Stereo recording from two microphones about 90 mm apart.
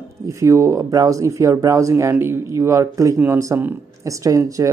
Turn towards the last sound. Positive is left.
turn(degrees=-35)  # may be behind; listen again after turning